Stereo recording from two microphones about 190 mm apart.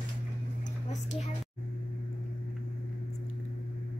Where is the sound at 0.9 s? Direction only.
35° left (ahead or behind).